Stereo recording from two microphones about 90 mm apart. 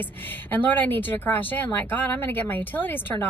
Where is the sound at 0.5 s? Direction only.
20° left (ahead or behind).